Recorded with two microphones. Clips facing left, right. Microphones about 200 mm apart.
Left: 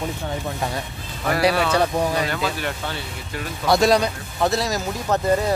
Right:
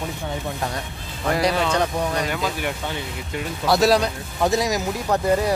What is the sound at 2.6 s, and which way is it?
Speech, 15° right (ahead or behind).